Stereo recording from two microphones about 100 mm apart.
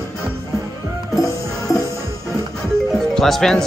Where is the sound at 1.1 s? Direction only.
35° left (ahead or behind).